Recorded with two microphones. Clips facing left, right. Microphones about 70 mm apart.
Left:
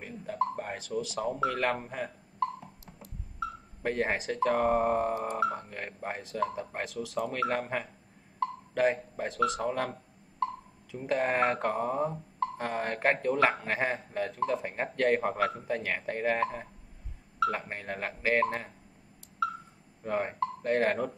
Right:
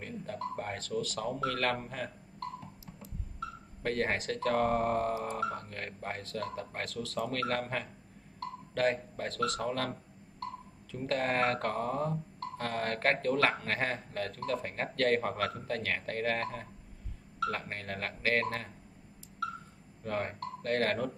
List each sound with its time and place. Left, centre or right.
0.0 s speech: centre
3.8 s speech: centre
20.0 s speech: centre